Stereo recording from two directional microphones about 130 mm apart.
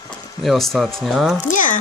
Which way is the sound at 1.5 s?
90° left.